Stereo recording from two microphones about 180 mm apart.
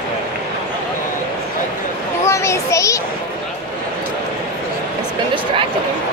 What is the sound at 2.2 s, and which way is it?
Children playing, 15° left (ahead or behind).